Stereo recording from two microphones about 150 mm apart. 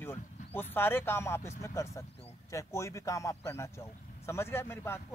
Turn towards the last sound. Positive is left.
turn(degrees=15)  # may be behind; listen again after turning